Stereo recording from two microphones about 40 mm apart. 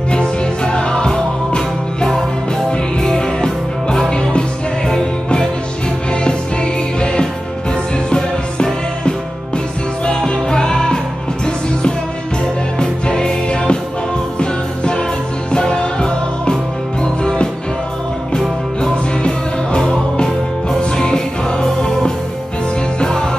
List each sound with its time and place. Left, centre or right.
0.1 s music: left
3.0 s music: centre
6.2 s music: left
10.0 s music: left
12.7 s music: left
21.5 s music: centre